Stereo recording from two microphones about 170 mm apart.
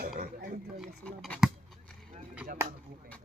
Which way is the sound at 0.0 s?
65° right (ahead or behind).